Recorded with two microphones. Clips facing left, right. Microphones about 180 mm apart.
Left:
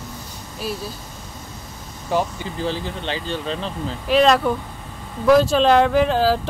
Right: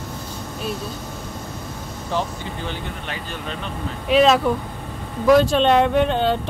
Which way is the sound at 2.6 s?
30° left (ahead or behind).